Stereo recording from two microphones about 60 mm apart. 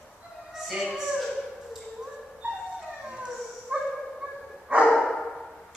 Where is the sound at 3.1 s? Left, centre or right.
Centre.